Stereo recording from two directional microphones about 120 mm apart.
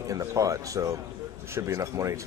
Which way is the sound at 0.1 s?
30° right (ahead or behind).